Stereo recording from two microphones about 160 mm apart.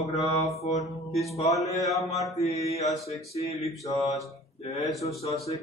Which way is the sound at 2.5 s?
40° left (ahead or behind).